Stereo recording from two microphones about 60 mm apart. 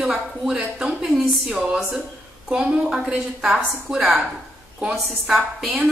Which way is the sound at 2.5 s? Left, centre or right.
Centre.